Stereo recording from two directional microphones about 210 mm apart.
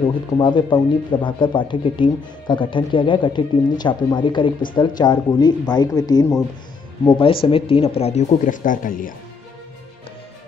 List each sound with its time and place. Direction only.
0.0 s speech: 20° left (ahead or behind); by 9.1 s 40° left (ahead or behind)